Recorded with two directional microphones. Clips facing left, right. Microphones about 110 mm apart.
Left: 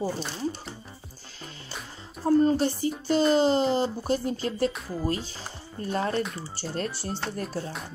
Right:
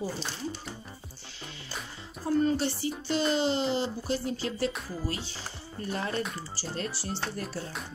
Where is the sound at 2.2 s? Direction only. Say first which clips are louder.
Left 5 dB; 40° left (ahead or behind).